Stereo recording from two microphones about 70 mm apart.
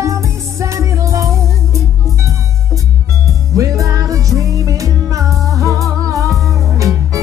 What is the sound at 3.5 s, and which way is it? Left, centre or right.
Music, right.